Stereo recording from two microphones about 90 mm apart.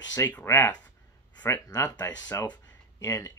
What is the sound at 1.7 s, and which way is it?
Speech, 45° left (ahead or behind).